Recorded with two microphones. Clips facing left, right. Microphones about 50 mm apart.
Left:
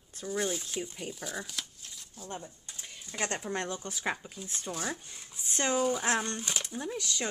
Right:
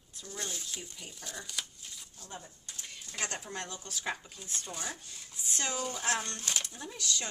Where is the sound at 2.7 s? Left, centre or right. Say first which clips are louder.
Right 3 dB; centre.